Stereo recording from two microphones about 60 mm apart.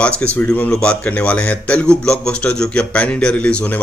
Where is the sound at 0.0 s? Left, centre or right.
Left.